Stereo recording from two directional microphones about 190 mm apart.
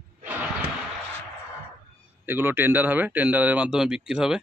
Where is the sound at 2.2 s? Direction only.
10° right (ahead or behind).